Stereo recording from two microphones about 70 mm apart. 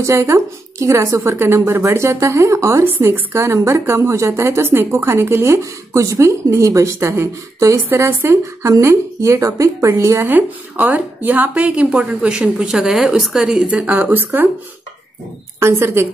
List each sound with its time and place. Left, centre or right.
0.0 s a woman's voice: right
8.4 s a woman's voice: right
10.2 s a woman's voice: right; by 13.7 s centre
13.7 s speech: centre
15.6 s a woman's voice: right